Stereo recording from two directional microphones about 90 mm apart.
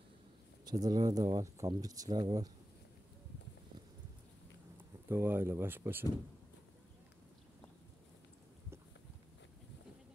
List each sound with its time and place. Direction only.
0.7 s speech: 50° right (ahead or behind)
5.0 s speech: 25° right (ahead or behind)